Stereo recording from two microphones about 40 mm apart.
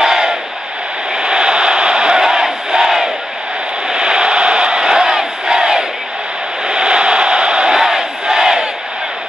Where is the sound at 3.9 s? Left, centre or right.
Right.